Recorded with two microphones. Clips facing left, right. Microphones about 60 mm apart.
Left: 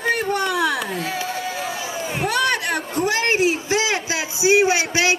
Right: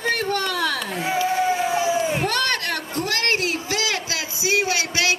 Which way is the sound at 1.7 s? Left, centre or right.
Right.